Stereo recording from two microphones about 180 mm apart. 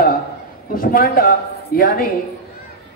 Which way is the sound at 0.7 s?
50° left (ahead or behind).